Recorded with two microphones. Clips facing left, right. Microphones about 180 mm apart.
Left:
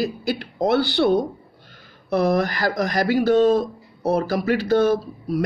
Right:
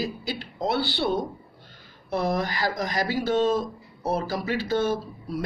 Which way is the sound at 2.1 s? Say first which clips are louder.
Left 6 dB; 75° left (ahead or behind).